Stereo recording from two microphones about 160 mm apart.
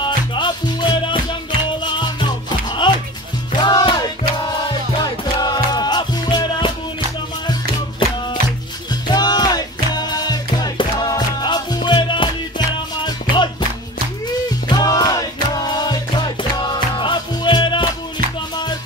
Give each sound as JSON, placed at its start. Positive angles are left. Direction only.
{"t": 0.0, "sound": "music", "side_deg": 30}
{"t": 8.0, "sound": "music", "side_deg": 30}
{"t": 14.7, "sound": "music", "side_deg": 25}